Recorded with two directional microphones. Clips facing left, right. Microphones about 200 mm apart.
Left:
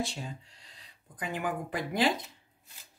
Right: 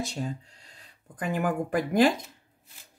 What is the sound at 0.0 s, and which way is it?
Speech, 40° right (ahead or behind).